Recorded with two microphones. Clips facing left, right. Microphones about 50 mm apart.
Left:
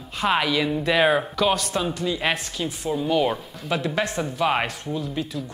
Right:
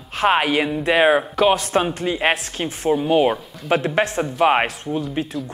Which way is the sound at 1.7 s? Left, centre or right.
Right.